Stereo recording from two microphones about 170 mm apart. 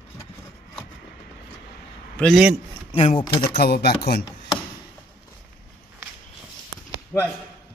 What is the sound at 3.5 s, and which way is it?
Speech, 65° left (ahead or behind).